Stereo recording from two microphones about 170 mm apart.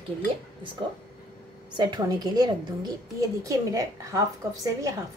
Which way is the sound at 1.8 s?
25° right (ahead or behind).